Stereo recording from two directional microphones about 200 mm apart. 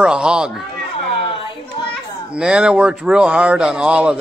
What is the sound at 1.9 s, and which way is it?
Speech, 5° right (ahead or behind).